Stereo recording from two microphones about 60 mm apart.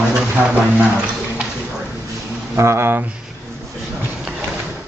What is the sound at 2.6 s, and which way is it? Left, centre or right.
Speech, right.